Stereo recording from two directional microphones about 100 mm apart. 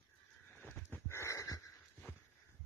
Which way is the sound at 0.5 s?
20° left (ahead or behind).